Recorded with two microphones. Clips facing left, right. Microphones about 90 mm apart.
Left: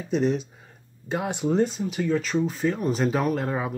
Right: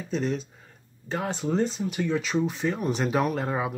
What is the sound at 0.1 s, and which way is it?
Speech, 5° left (ahead or behind).